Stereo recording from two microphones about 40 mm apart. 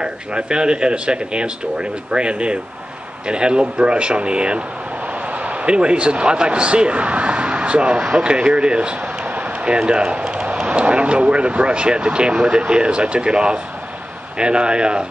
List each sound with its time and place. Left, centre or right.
0.0 s speech: right